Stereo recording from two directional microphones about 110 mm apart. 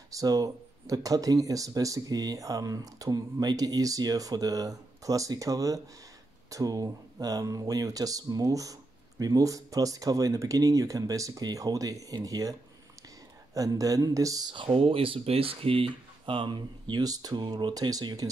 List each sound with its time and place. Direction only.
0.1 s speech: 35° right (ahead or behind)
14.5 s speech: 50° right (ahead or behind); by 18.3 s 35° right (ahead or behind)